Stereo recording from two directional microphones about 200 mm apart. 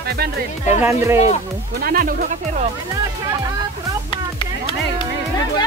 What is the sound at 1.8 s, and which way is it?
Speech, 45° right (ahead or behind).